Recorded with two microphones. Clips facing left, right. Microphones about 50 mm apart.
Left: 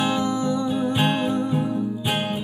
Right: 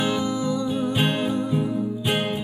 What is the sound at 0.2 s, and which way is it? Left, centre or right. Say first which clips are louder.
Music: left 1 dB; left.